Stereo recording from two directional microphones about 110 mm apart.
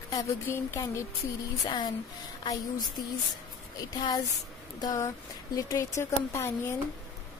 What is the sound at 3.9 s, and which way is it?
A woman's voice, 40° left (ahead or behind).